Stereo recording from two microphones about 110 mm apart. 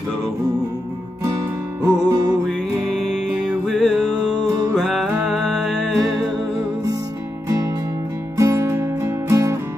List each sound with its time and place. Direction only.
2.0 s music: 35° right (ahead or behind)
3.6 s music: 5° right (ahead or behind)
8.4 s music: 30° right (ahead or behind)